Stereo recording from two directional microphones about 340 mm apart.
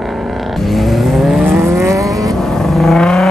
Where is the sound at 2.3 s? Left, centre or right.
Centre.